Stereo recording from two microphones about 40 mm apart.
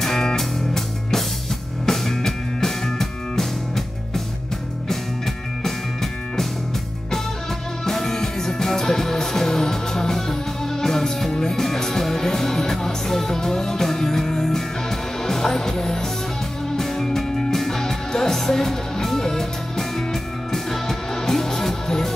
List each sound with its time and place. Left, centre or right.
0.0 s music: centre
7.8 s music: centre